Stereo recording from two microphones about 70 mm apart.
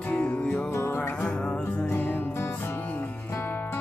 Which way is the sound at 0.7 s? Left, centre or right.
Left.